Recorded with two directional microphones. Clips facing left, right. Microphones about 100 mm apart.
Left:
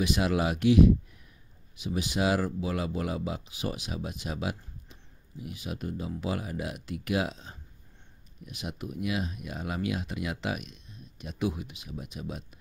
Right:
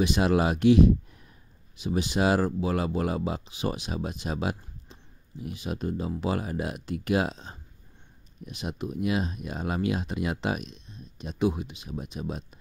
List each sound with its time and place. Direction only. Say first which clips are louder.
0.0 s speech: right 4 dB; 35° right (ahead or behind)